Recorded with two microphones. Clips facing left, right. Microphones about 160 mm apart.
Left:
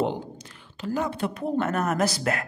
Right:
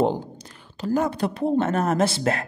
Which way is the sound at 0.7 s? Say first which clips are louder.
Right 5 dB; 40° right (ahead or behind).